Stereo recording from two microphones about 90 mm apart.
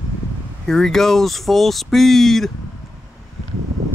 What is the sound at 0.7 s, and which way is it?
Speech, 5° left (ahead or behind).